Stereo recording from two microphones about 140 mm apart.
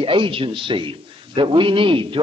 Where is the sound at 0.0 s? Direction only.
40° right (ahead or behind).